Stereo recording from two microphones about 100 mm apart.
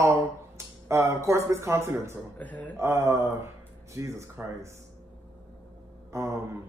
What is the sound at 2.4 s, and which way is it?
Speech, 15° left (ahead or behind).